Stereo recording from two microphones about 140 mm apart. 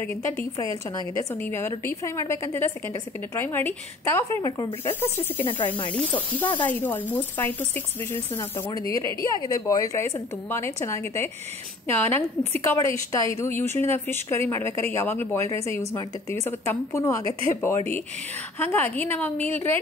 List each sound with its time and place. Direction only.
0.9 s a woman's voice: 20° left (ahead or behind)
4.8 s a woman's voice: 15° left (ahead or behind)